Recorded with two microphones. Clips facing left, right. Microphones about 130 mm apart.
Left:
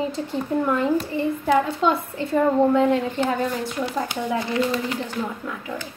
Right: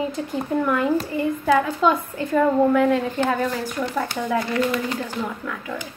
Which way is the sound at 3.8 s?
15° left (ahead or behind).